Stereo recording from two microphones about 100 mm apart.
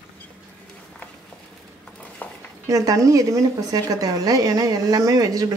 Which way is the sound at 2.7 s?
35° right (ahead or behind).